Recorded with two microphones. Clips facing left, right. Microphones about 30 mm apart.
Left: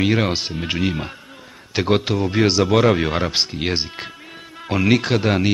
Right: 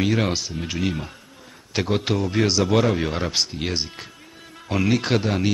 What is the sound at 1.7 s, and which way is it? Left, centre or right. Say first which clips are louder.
Speech: left 3 dB; centre.